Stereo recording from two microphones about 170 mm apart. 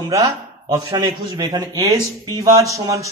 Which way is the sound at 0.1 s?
20° right (ahead or behind).